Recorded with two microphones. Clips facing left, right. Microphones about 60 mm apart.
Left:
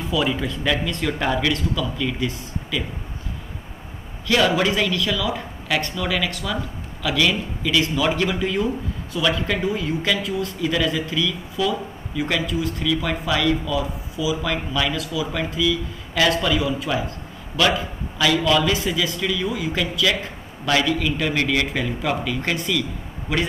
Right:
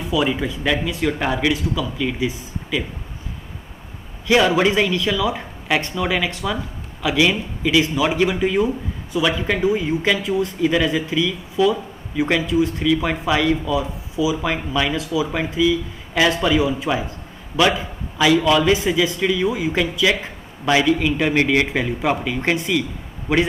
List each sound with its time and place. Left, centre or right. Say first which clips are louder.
0.1 s speech: right 3 dB; centre
4.3 s speech: right 3 dB; centre